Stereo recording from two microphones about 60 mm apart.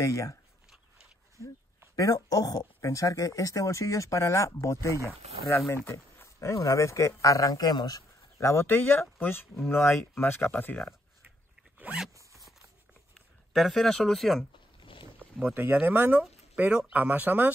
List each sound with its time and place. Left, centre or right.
0.0 s speech: left
2.0 s speech: left
8.4 s speech: left
11.9 s zipper: right
13.5 s speech: centre
15.5 s speech: right